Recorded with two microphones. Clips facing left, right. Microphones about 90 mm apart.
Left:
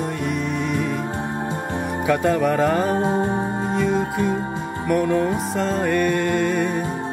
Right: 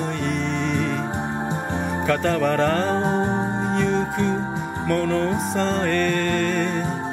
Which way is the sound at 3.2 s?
20° right (ahead or behind).